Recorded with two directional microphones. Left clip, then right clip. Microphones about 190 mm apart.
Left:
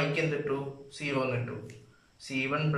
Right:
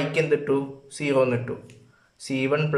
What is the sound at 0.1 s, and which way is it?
Speech, 45° right (ahead or behind).